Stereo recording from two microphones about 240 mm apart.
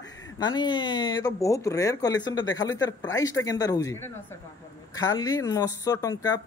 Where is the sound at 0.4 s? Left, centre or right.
Centre.